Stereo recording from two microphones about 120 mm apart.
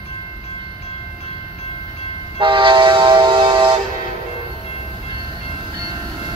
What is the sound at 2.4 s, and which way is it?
Train, 45° right (ahead or behind).